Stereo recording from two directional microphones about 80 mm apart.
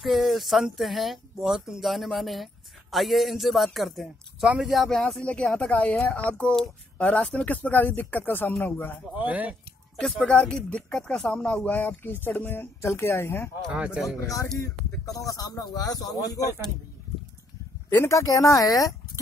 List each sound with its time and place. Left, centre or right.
0.0 s speech: centre; by 8.9 s left
9.1 s speech: centre
10.1 s speech: centre; by 13.5 s left
13.7 s speech: centre
14.2 s speech: left
17.8 s speech: left